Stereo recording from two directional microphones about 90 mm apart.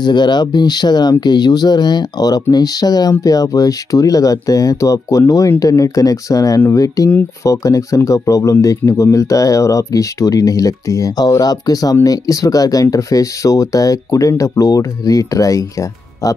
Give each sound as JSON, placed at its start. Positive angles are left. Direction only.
{"t": 0.0, "sound": "speech", "side_deg": 55}